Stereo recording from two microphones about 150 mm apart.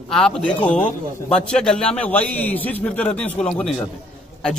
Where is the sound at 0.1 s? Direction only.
5° left (ahead or behind).